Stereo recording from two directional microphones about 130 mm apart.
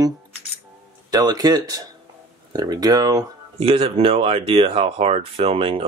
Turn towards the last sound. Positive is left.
turn(degrees=-45)  # may be behind; listen again after turning